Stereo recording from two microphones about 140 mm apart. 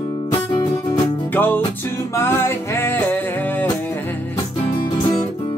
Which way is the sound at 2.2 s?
15° left (ahead or behind).